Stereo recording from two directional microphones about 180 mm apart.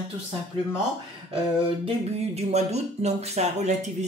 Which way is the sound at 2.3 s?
35° right (ahead or behind).